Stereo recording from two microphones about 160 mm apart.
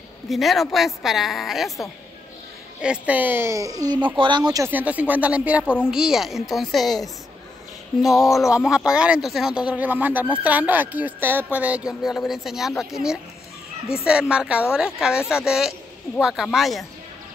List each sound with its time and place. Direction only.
0.3 s speech: centre (ahead or behind)
8.1 s speech: 20° left (ahead or behind)
8.4 s speech: 5° right (ahead or behind)